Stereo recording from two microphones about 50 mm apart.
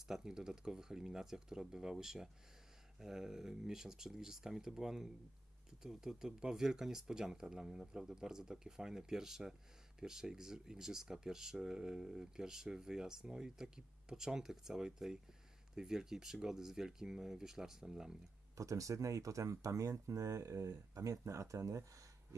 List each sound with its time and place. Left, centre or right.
0.1 s speech: centre
18.6 s speech: right